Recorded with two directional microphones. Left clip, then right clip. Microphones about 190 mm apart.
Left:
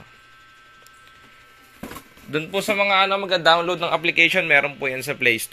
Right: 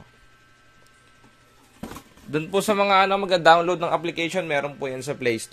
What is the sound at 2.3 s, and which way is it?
A man's voice, 30° right (ahead or behind).